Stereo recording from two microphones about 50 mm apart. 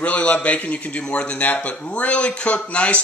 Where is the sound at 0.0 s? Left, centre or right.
Left.